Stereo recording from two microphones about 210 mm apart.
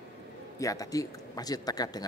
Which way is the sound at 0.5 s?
15° left (ahead or behind).